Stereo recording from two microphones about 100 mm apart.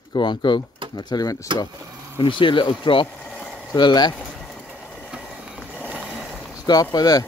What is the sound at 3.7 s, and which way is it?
Speech, 45° left (ahead or behind).